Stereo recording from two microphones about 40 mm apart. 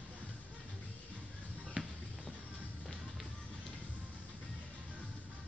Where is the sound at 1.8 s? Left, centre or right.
Right.